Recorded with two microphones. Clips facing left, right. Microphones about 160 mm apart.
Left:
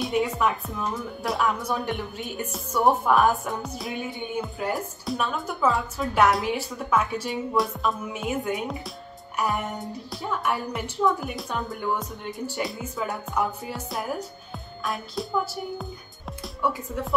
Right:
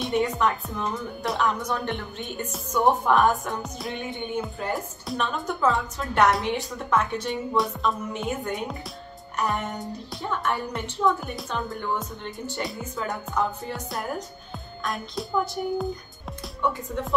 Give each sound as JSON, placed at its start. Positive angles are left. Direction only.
{"t": 0.0, "sound": "a woman's voice", "side_deg": 0}